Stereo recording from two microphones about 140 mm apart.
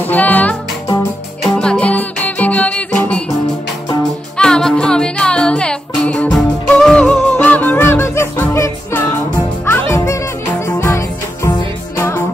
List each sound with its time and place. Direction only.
0.0 s music: 10° left (ahead or behind)
1.6 s music: 10° left (ahead or behind)
4.4 s music: 5° left (ahead or behind)